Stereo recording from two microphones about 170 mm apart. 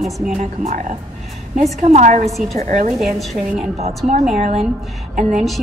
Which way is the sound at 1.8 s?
45° right (ahead or behind).